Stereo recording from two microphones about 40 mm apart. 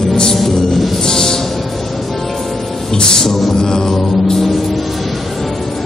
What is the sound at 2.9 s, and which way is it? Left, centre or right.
Music, centre.